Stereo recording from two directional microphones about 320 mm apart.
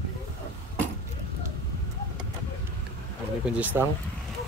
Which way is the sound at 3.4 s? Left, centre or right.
Centre.